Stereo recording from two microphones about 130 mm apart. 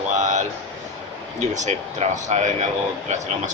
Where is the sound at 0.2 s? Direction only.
65° right (ahead or behind).